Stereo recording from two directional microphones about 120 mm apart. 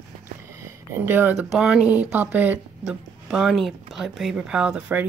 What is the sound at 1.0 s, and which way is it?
Speech, 15° right (ahead or behind).